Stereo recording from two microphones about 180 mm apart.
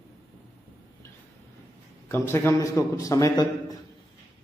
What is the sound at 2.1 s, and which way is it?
A man's voice, 15° left (ahead or behind).